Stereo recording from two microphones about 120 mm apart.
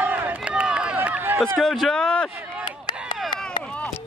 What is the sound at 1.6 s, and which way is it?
Speech, centre (ahead or behind).